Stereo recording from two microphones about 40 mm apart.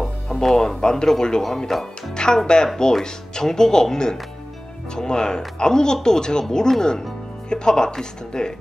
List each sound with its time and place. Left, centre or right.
0.3 s speech: centre
0.7 s speech: left
2.1 s speech: centre